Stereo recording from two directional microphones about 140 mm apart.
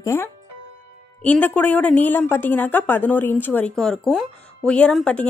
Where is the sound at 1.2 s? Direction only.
10° left (ahead or behind).